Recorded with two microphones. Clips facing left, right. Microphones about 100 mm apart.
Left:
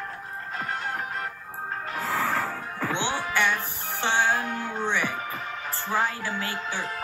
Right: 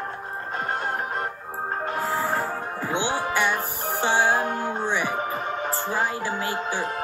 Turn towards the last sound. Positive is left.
turn(degrees=-30)  # may be behind; listen again after turning